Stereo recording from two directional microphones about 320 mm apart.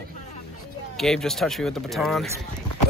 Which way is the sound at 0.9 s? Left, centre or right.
Centre.